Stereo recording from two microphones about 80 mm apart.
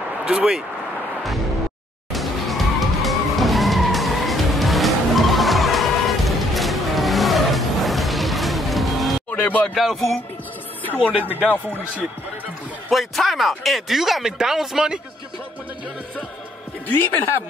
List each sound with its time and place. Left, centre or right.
0.2 s speech: centre
2.1 s music: centre
9.3 s speech: left
11.0 s speech: centre
12.9 s speech: centre
16.8 s speech: left